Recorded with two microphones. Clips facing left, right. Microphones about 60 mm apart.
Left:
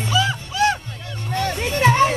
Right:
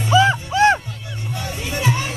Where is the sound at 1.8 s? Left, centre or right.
Left.